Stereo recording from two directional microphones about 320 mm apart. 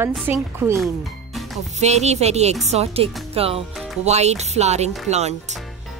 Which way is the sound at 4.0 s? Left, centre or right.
Centre.